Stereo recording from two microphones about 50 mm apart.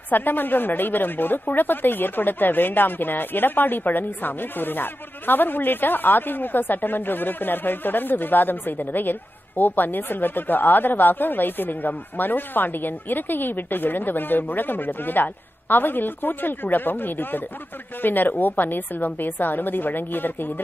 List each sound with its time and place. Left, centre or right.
0.1 s a woman's voice: left